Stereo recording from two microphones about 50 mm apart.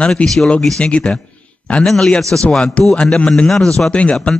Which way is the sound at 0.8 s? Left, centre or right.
Left.